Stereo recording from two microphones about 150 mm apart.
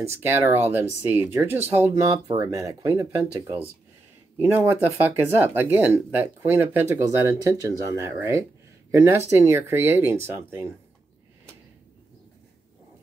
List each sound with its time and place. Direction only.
0.0 s speech: 15° right (ahead or behind)